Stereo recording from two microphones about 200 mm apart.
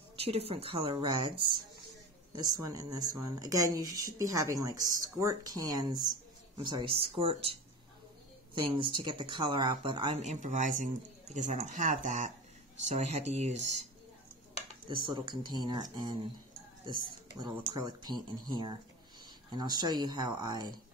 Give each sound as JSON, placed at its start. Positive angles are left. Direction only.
{"t": 0.1, "sound": "speech", "side_deg": -30}
{"t": 6.0, "sound": "a sound", "side_deg": -20}
{"t": 7.0, "sound": "speech", "side_deg": -30}
{"t": 8.5, "sound": "speech", "side_deg": -25}
{"t": 15.0, "sound": "speech", "side_deg": -25}
{"t": 17.4, "sound": "speech", "side_deg": -20}